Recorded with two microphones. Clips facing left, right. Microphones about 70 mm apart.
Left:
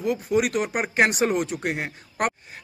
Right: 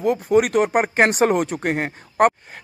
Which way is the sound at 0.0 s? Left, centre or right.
Right.